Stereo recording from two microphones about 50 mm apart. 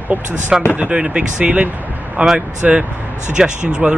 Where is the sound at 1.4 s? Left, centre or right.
Right.